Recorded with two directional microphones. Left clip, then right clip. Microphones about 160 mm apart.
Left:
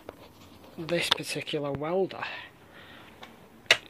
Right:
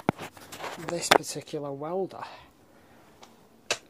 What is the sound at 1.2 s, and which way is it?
Speech, 30° right (ahead or behind).